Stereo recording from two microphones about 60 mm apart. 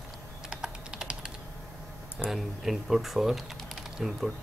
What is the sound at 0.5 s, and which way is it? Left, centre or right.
Typing, centre.